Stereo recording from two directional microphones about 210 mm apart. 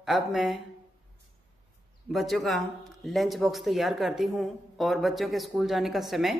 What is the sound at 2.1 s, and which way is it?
Speech, centre (ahead or behind).